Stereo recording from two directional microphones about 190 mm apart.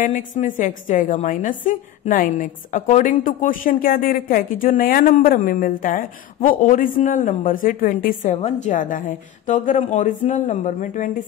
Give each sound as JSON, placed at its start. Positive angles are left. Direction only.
{"t": 0.0, "sound": "a woman's voice", "side_deg": 40}